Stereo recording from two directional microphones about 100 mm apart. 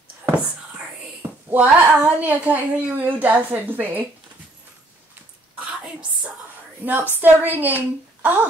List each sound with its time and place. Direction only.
0.2 s whispering: 15° right (ahead or behind)
1.5 s a woman's voice: 10° right (ahead or behind)
6.8 s a woman's voice: 20° right (ahead or behind)